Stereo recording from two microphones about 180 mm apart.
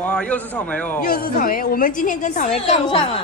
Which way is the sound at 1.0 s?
55° left (ahead or behind).